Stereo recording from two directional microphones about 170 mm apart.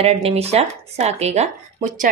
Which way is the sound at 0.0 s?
35° right (ahead or behind).